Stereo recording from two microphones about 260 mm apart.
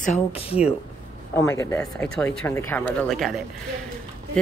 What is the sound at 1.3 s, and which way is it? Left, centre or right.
Speech, centre.